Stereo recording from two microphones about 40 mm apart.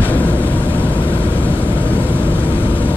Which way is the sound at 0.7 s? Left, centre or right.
Left.